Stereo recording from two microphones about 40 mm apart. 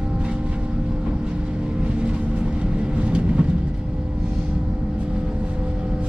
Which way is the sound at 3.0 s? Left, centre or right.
Right.